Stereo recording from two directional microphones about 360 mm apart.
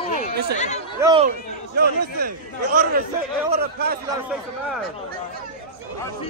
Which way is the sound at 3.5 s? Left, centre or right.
Right.